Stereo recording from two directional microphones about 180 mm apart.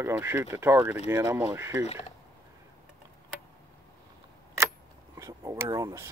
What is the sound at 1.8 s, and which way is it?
Speech, 35° left (ahead or behind).